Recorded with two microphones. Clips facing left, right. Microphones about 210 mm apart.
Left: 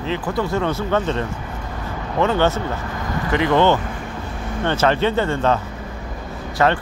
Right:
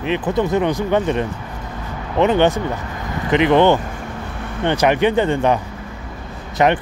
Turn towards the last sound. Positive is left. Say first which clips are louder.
# right 2 dB
turn(degrees=-20)  # may be behind; listen again after turning